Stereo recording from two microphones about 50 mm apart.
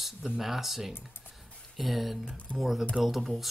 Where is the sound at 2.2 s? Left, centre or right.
Left.